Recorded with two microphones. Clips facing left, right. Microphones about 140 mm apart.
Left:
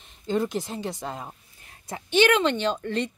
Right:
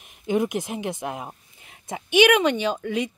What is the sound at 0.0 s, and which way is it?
A woman's voice, 15° right (ahead or behind).